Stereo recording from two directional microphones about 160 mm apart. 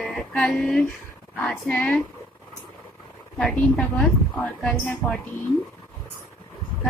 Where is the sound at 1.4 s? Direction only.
5° left (ahead or behind).